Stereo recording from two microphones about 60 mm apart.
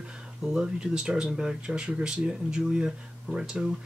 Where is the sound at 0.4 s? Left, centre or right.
Centre.